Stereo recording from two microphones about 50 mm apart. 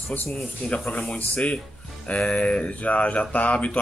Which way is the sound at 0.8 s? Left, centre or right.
Left.